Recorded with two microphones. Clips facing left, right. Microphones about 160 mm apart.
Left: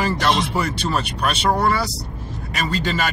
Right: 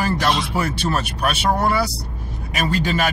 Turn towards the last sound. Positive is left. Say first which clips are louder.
# right 2 dB
turn(degrees=-10)  # may be behind; listen again after turning